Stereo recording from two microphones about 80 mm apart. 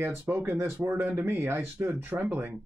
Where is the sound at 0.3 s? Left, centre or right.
Right.